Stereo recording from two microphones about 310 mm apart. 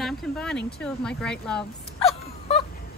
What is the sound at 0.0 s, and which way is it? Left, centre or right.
Speech, centre.